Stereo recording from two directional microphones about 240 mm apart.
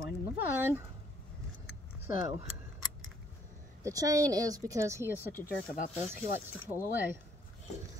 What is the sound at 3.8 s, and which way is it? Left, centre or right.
A woman's voice, centre.